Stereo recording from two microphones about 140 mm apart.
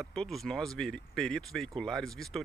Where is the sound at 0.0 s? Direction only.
5° left (ahead or behind).